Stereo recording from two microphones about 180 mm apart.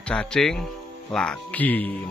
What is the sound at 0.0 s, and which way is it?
Speech, 5° left (ahead or behind).